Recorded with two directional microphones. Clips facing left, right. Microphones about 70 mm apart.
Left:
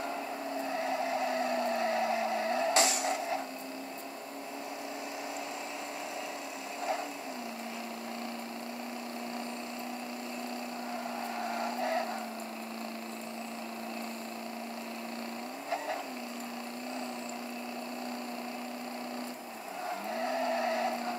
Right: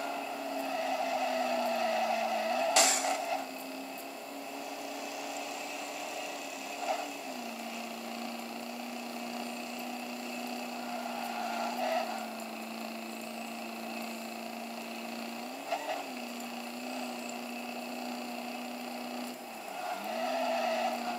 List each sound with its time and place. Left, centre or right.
0.7 s vehicle: left
3.0 s a sound: left
11.1 s vehicle: left
20.1 s vehicle: left